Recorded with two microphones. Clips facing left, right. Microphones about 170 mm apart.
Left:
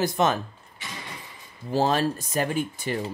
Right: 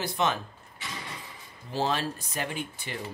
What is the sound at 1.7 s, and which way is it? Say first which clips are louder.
Speech: left 6 dB; 45° left (ahead or behind).